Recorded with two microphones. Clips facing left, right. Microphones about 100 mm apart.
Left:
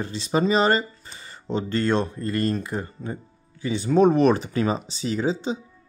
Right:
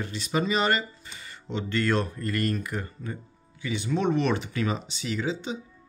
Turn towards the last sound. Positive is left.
turn(degrees=35)  # may be behind; listen again after turning